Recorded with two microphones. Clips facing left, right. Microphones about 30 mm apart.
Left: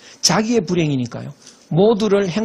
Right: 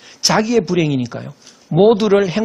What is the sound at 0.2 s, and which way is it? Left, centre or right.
Speech, centre.